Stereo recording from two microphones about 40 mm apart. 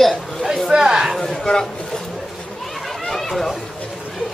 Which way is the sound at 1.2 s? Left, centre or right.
Centre.